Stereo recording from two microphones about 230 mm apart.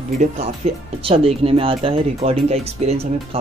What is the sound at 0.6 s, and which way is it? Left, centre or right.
Speech, right.